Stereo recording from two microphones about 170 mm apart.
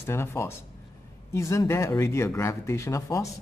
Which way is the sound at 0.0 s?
15° left (ahead or behind).